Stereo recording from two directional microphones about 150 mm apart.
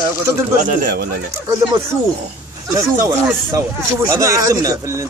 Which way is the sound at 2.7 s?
20° right (ahead or behind).